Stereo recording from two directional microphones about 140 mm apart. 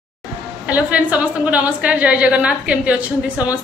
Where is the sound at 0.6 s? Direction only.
10° right (ahead or behind).